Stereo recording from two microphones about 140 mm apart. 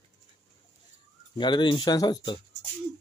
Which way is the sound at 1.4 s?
35° left (ahead or behind).